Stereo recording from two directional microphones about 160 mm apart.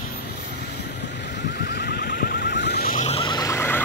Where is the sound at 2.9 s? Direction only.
40° left (ahead or behind).